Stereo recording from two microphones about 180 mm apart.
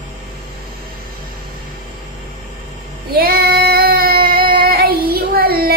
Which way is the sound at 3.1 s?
60° right (ahead or behind).